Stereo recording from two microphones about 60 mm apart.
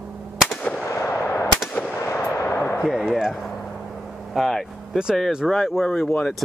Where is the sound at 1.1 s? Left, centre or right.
Left.